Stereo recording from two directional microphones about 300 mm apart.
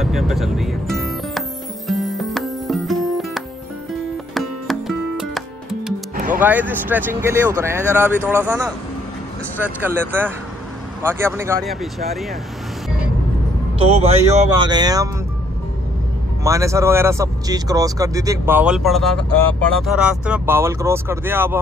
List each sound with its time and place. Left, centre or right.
0.0 s speech: centre
1.9 s music: centre
6.1 s music: right
6.4 s speech: centre
13.7 s speech: centre
16.4 s speech: centre